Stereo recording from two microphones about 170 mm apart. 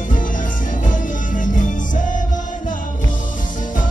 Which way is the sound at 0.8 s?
50° left (ahead or behind).